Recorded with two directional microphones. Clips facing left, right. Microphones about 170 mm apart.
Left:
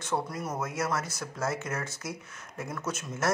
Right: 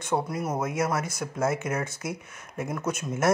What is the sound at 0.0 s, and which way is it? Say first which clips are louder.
A man's voice: right 4 dB; 15° right (ahead or behind).